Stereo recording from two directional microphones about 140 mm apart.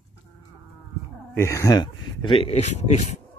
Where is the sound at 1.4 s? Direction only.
20° left (ahead or behind).